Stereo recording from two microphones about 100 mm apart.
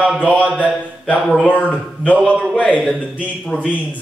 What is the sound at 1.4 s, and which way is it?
Speech, 15° left (ahead or behind).